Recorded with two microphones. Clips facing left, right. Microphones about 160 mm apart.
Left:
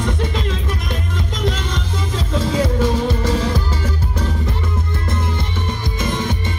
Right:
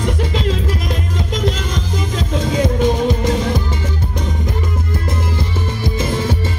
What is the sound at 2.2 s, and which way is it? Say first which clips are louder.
Music: right 1 dB; 20° right (ahead or behind).